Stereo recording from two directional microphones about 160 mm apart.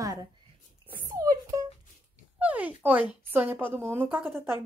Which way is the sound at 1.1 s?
20° right (ahead or behind).